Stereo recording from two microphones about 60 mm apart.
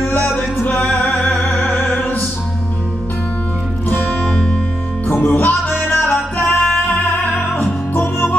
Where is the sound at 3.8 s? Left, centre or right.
Left.